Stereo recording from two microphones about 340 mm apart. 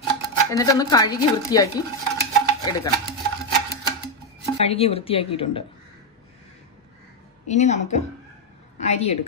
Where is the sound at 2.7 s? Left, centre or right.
Centre.